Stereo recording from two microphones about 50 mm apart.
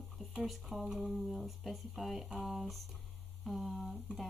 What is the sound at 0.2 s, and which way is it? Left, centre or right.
Speech, centre.